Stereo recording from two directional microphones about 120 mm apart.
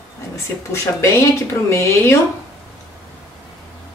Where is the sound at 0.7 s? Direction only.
20° left (ahead or behind).